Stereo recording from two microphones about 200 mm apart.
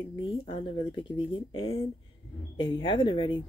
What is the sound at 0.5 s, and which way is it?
Speech, 25° left (ahead or behind).